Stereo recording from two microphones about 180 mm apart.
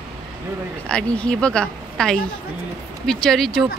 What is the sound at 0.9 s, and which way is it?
A woman's voice, 5° left (ahead or behind).